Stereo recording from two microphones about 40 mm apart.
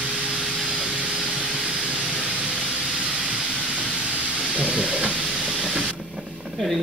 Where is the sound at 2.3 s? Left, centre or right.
Right.